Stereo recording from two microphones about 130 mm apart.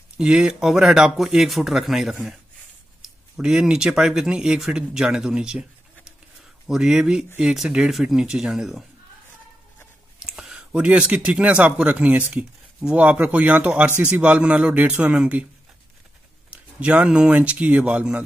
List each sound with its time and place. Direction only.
0.2 s speech: 5° right (ahead or behind)
6.7 s speech: 5° right (ahead or behind)
10.1 s a man's voice: 5° right (ahead or behind)
16.4 s speech: 10° right (ahead or behind)